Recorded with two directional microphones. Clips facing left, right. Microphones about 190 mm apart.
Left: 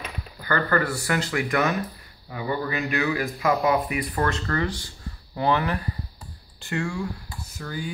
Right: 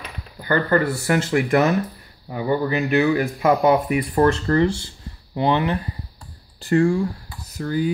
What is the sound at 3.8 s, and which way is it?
Speech, 30° right (ahead or behind).